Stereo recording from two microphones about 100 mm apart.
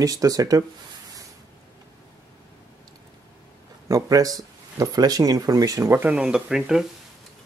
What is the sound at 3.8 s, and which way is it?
Speech, 35° right (ahead or behind).